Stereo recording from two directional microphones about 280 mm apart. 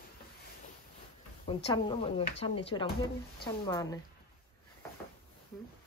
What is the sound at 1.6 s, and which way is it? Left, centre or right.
A woman's voice, centre.